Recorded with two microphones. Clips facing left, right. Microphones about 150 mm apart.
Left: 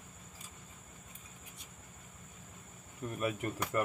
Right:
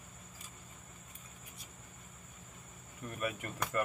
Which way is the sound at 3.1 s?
30° left (ahead or behind).